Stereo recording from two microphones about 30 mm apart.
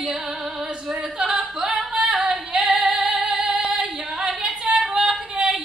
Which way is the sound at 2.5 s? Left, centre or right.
Right.